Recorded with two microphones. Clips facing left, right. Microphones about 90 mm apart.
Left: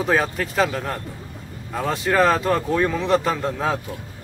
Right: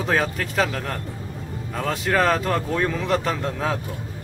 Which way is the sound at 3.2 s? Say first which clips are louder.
Left 2 dB; 5° left (ahead or behind).